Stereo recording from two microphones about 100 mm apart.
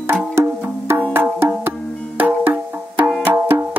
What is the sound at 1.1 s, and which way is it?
Music, 20° right (ahead or behind).